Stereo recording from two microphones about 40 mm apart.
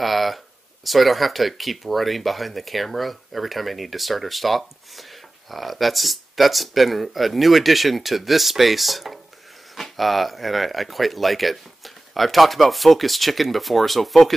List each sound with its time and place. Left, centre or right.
0.0 s speech: centre